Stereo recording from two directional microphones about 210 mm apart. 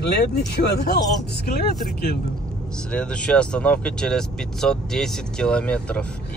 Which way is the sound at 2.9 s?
5° left (ahead or behind).